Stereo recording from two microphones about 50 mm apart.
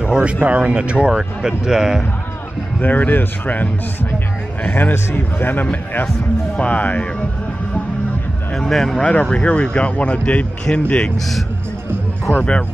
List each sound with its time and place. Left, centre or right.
0.0 s speech: right
2.8 s speech: left
4.6 s speech: left
6.5 s speech: left
8.5 s speech: centre
9.0 s speech: left
11.1 s a man's voice: centre